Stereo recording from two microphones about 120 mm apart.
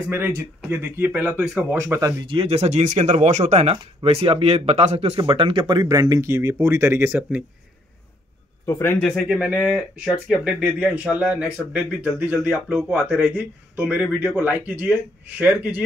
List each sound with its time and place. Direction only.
0.0 s speech: 20° right (ahead or behind)
1.8 s speech: 25° right (ahead or behind)
2.2 s speech: 55° right (ahead or behind); by 3.7 s 70° right (ahead or behind)
3.7 s speech: 50° right (ahead or behind)
5.2 s speech: 45° right (ahead or behind); by 7.4 s 15° right (ahead or behind)
8.6 s a man's voice: 20° left (ahead or behind)
9.3 s speech: 10° right (ahead or behind)